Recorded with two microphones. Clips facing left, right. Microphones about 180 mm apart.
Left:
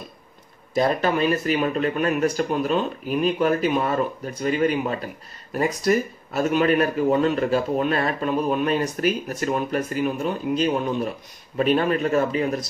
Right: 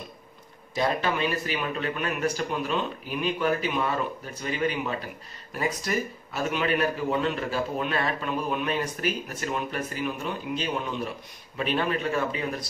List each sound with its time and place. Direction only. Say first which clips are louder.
0.7 s a man's voice: left 5 dB; 40° left (ahead or behind)